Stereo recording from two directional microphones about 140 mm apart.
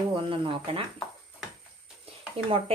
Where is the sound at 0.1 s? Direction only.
35° right (ahead or behind).